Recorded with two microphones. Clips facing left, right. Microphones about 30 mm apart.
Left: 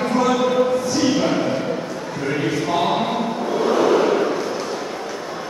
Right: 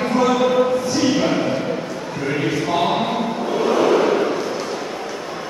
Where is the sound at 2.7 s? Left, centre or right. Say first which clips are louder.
Even; centre.